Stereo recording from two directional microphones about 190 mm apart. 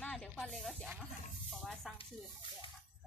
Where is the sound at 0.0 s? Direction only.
5° left (ahead or behind).